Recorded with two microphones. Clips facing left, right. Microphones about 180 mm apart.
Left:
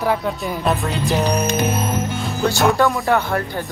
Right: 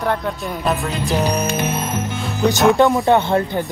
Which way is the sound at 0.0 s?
5° left (ahead or behind).